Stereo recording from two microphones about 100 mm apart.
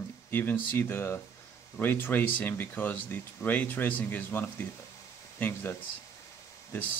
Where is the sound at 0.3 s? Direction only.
20° left (ahead or behind).